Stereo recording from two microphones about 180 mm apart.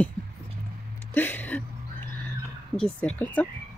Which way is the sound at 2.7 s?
5° left (ahead or behind).